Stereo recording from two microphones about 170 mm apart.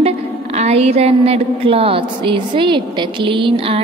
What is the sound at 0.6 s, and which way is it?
A woman's voice, 35° right (ahead or behind).